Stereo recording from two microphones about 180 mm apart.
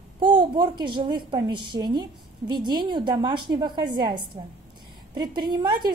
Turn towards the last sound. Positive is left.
turn(degrees=-25)  # may be behind; listen again after turning